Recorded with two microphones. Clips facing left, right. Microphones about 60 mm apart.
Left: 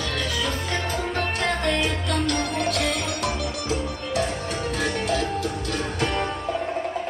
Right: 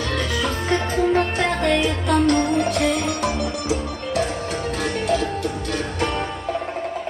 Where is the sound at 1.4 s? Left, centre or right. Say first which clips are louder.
Right 4 dB; right.